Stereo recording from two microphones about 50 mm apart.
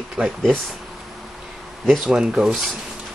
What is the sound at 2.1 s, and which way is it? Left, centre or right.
Speech, centre.